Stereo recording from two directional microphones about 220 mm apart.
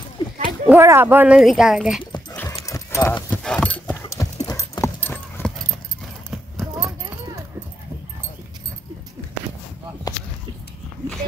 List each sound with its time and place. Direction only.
0.7 s speech: 10° right (ahead or behind)
2.3 s horse: 15° left (ahead or behind)
4.5 s clip-clop: 15° left (ahead or behind)